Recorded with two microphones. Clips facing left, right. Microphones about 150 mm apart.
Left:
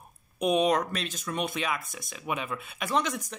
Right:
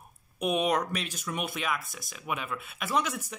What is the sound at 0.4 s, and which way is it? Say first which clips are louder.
Speech: left 3 dB; 5° right (ahead or behind).